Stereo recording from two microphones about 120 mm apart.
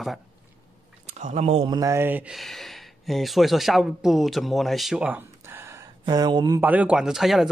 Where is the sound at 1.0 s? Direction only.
70° right (ahead or behind).